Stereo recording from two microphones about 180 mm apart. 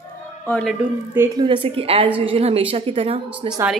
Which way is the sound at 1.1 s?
15° right (ahead or behind).